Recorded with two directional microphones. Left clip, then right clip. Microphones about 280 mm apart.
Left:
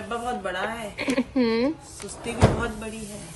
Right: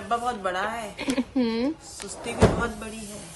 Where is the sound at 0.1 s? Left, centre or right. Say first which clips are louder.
Right 3 dB; centre.